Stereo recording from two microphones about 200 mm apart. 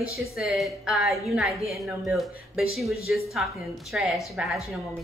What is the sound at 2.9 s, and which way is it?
Speech, 50° left (ahead or behind).